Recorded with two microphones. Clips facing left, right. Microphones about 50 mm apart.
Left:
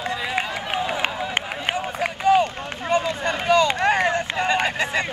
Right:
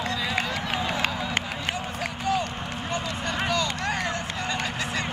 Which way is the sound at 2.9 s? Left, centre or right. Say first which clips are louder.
Left 9 dB; left.